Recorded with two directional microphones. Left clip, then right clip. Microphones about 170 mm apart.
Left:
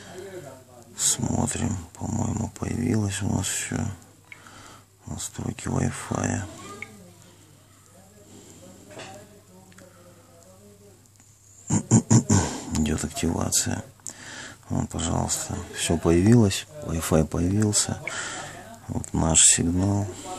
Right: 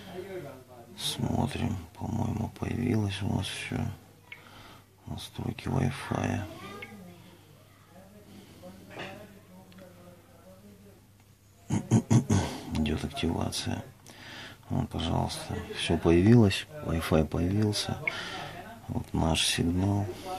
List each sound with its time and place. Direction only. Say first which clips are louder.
0.9 s speech: left 5 dB; 20° left (ahead or behind)
11.6 s a sound: left 6 dB; 25° left (ahead or behind)
15.7 s speech: left 3 dB; 15° left (ahead or behind)